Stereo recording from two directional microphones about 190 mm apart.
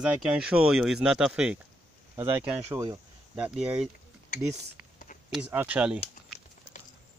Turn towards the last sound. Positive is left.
turn(degrees=-5)  # may be behind; listen again after turning